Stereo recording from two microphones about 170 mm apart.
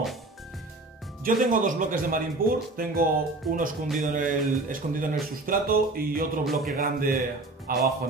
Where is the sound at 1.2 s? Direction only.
55° right (ahead or behind).